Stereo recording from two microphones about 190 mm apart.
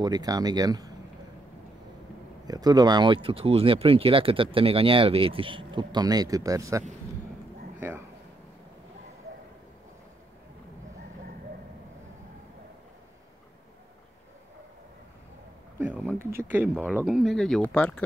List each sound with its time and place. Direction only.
0.0 s speech: 20° right (ahead or behind)
2.4 s speech: 20° right (ahead or behind)
15.8 s a sound: 10° right (ahead or behind)
16.7 s speech: 5° right (ahead or behind)